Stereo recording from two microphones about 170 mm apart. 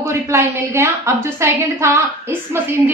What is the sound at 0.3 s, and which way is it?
A woman's voice, 15° right (ahead or behind).